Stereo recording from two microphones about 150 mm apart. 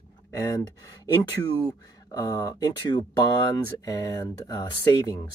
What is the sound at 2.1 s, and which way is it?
Speech, 25° left (ahead or behind).